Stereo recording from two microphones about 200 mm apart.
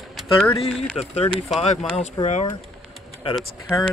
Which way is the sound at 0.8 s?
30° left (ahead or behind).